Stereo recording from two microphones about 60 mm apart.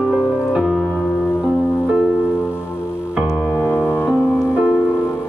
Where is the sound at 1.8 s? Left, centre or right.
Centre.